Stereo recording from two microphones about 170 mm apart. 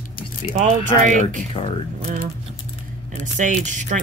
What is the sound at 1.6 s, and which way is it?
Speech, 30° left (ahead or behind).